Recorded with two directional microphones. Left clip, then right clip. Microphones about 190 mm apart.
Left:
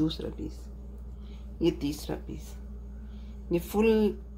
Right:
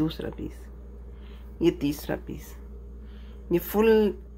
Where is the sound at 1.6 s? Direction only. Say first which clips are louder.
Right 4 dB; 25° right (ahead or behind).